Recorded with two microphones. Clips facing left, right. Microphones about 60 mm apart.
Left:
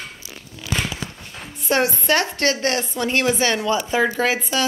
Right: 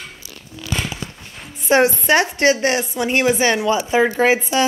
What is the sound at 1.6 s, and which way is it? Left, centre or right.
A woman's voice, right.